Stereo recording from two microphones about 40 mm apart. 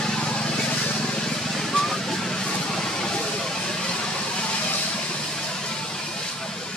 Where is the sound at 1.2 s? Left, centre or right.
Centre.